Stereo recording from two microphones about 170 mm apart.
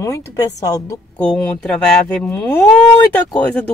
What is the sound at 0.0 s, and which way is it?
Speech, 20° left (ahead or behind).